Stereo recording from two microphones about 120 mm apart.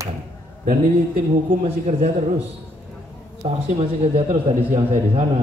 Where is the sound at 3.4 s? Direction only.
70° right (ahead or behind).